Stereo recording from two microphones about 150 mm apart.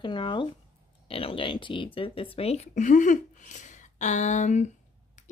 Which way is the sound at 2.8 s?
60° left (ahead or behind).